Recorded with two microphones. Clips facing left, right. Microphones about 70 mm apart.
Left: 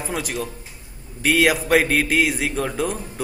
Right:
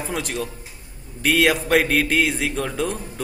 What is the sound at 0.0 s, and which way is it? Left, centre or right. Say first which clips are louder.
A man's voice: even; centre.